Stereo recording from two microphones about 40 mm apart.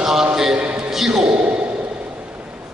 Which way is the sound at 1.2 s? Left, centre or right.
Right.